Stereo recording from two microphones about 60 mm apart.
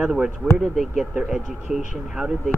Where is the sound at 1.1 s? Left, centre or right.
Centre.